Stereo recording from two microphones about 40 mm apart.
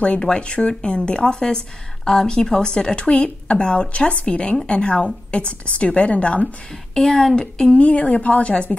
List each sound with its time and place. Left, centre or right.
0.2 s speech: left
6.9 s speech: centre
7.7 s a woman's voice: left